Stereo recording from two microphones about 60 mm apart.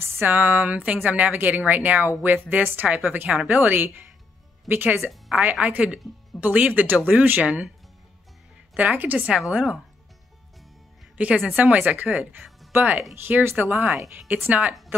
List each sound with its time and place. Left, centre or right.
0.0 s a sound: right
0.3 s a woman's voice: right
5.3 s speech: right
8.7 s speech: right
9.5 s speech: centre
11.1 s a woman's voice: right